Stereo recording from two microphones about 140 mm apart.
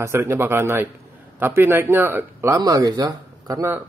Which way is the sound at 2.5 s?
25° right (ahead or behind).